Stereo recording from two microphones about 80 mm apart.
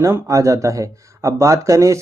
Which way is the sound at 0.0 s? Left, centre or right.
Right.